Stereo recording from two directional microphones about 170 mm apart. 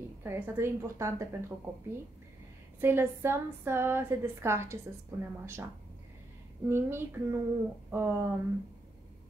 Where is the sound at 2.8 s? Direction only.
15° right (ahead or behind).